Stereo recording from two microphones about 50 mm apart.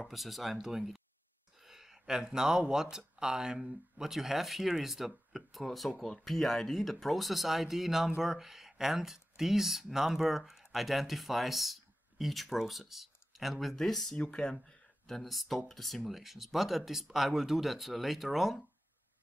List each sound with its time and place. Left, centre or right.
0.1 s speech: centre
14.1 s speech: centre
15.0 s speech: centre